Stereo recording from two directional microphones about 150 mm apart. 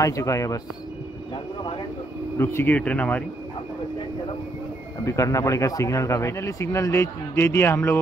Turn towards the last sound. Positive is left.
turn(degrees=15)  # may be behind; listen again after turning